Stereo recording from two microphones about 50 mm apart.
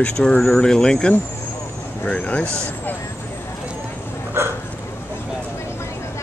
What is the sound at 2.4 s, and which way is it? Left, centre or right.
Speech, right.